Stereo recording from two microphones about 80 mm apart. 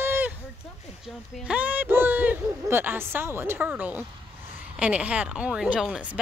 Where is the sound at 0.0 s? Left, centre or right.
Right.